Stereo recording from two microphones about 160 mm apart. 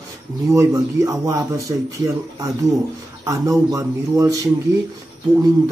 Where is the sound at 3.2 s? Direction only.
20° right (ahead or behind).